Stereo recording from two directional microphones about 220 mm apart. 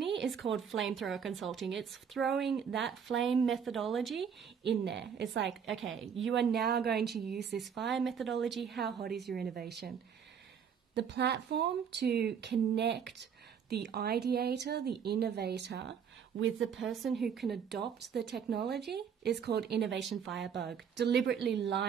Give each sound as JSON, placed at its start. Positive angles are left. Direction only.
{"t": 0.2, "sound": "speech", "side_deg": 0}
{"t": 4.6, "sound": "speech", "side_deg": -50}
{"t": 5.5, "sound": "speech", "side_deg": 0}
{"t": 6.1, "sound": "speech", "side_deg": -60}
{"t": 6.6, "sound": "speech", "side_deg": -45}
{"t": 7.5, "sound": "speech", "side_deg": 0}
{"t": 9.3, "sound": "speech", "side_deg": -45}
{"t": 11.0, "sound": "speech", "side_deg": -50}
{"t": 16.6, "sound": "speech", "side_deg": 0}
{"t": 18.0, "sound": "speech", "side_deg": -50}
{"t": 20.0, "sound": "speech", "side_deg": 0}
{"t": 20.5, "sound": "speech", "side_deg": -50}